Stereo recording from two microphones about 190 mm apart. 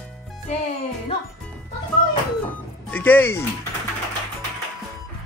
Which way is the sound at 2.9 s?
10° left (ahead or behind).